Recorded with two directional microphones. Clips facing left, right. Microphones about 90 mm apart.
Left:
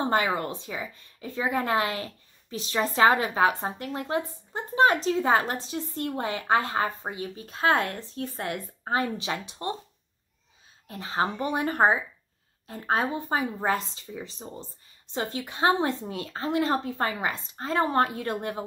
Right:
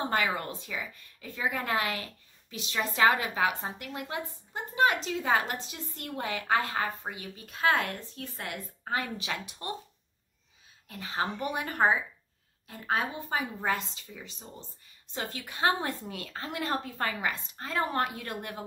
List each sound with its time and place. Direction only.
0.0 s a woman's voice: 30° left (ahead or behind)
10.9 s a woman's voice: 30° left (ahead or behind)